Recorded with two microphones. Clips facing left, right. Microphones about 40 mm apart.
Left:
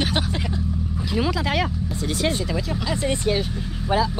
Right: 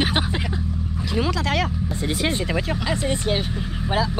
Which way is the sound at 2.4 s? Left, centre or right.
Right.